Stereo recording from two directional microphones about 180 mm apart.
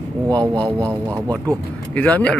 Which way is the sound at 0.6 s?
20° right (ahead or behind).